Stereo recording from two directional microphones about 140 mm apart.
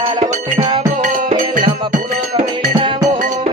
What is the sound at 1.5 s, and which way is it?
Music, 70° right (ahead or behind).